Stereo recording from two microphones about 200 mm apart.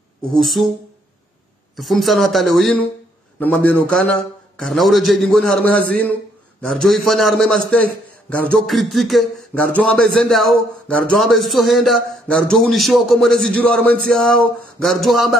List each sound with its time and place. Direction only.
0.3 s speech: centre (ahead or behind)
1.8 s speech: centre (ahead or behind)